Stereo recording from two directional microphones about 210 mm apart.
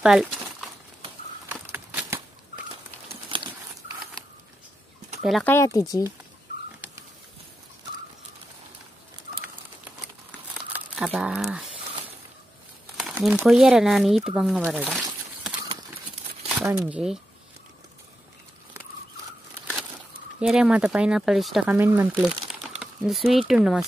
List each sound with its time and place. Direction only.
0.0 s crumpling: 5° right (ahead or behind)
1.5 s a sound: 10° right (ahead or behind)
3.1 s a sound: 25° right (ahead or behind)
5.2 s speech: centre (ahead or behind)
5.5 s speech: 15° left (ahead or behind)
11.0 s speech: 5° right (ahead or behind)
12.9 s speech: centre (ahead or behind)
16.5 s speech: 5° right (ahead or behind)
20.3 s speech: 5° right (ahead or behind)